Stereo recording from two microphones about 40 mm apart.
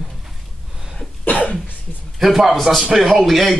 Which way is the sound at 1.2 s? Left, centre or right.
Left.